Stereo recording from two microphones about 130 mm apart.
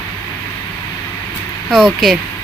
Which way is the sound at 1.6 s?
Centre (ahead or behind).